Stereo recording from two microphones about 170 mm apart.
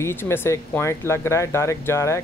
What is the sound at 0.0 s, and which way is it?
Speech, 15° left (ahead or behind).